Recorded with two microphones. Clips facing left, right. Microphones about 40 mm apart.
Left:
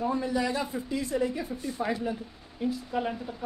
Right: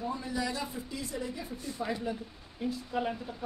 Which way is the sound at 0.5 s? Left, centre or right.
Left.